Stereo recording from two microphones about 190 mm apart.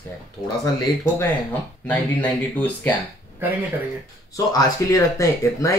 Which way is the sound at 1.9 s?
10° left (ahead or behind).